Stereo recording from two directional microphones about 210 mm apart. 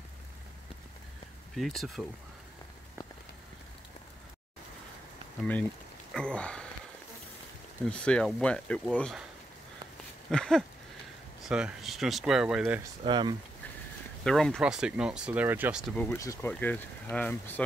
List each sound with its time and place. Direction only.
1.5 s speech: centre (ahead or behind)
6.1 s speech: 5° left (ahead or behind)
7.8 s speech: 5° left (ahead or behind)
10.3 s speech: 5° left (ahead or behind)
13.0 s speech: 20° right (ahead or behind)
14.2 s speech: 5° left (ahead or behind)
16.0 s speech: 10° left (ahead or behind)